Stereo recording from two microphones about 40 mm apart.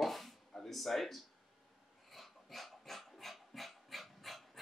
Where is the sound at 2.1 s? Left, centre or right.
Centre.